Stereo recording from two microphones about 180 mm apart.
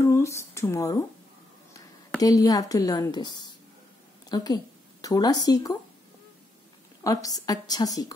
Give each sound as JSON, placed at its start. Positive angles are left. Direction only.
{"t": 0.0, "sound": "a sound", "side_deg": 15}
{"t": 2.2, "sound": "a woman's voice", "side_deg": 20}
{"t": 7.0, "sound": "a woman's voice", "side_deg": 20}